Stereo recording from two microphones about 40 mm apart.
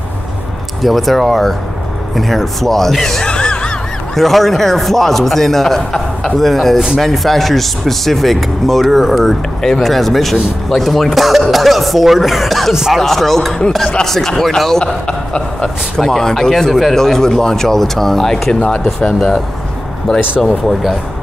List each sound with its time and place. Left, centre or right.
0.8 s a man's voice: centre
3.3 s gasp: left
4.1 s a man's voice: centre
12.7 s speech: centre
13.0 s speech: centre
15.0 s a sound: left
16.0 s speech: centre
20.6 s a man's voice: centre